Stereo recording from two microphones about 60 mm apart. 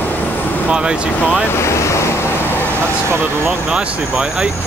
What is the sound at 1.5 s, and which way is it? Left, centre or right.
Waves, left.